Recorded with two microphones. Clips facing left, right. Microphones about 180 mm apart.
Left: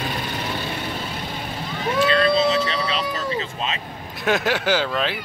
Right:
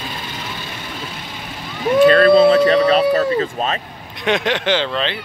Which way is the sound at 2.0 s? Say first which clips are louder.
Right 9 dB; 50° right (ahead or behind).